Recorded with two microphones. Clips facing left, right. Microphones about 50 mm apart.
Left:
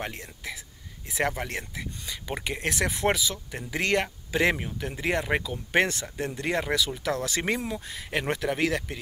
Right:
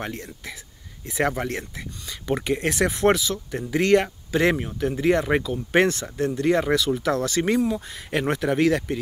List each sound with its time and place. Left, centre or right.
1.0 s speech: centre